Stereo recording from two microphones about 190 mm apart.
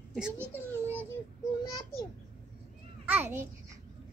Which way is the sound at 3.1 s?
10° right (ahead or behind).